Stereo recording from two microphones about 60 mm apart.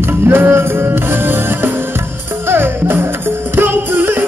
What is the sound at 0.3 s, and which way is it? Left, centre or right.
Music, right.